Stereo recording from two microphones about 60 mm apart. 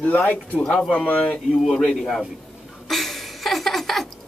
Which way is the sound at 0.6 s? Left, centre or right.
Centre.